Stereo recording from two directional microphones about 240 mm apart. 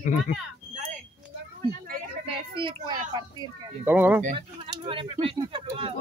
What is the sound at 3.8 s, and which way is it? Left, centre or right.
Speech, centre.